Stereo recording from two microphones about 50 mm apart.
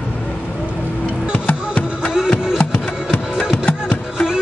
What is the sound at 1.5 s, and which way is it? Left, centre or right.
Music, left.